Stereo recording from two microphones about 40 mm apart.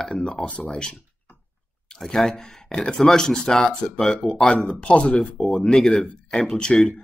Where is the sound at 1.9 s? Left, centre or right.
Centre.